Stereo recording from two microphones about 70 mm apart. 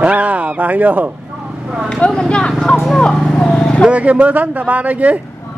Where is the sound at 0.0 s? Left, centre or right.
Centre.